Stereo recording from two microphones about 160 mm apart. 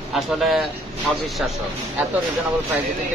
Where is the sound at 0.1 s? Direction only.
Centre (ahead or behind).